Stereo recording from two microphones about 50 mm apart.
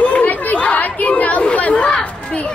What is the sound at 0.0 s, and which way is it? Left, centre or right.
Chatter, left.